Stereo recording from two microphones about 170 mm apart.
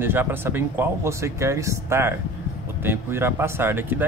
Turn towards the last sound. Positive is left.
turn(degrees=-15)  # may be behind; listen again after turning